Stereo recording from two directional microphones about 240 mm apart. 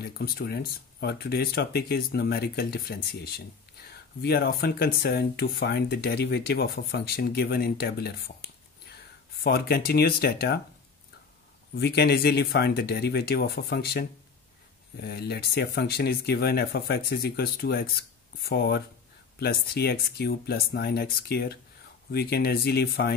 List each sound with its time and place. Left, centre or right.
0.0 s speech: left
9.4 s speech: left
11.7 s speech: left